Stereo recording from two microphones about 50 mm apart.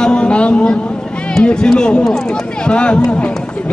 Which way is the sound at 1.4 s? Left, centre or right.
Centre.